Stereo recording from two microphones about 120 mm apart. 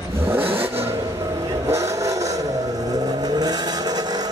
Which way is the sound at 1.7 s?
25° right (ahead or behind).